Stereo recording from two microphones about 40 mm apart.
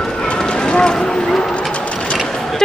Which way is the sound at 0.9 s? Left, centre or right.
Centre.